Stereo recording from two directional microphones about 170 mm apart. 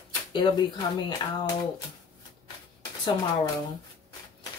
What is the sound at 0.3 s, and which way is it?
Speech, 25° left (ahead or behind).